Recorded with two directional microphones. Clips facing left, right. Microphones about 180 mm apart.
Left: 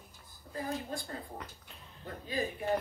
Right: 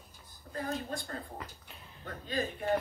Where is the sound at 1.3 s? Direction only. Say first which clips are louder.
Right 1 dB; centre (ahead or behind).